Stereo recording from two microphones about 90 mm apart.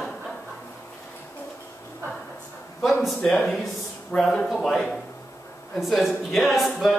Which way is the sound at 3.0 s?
5° left (ahead or behind).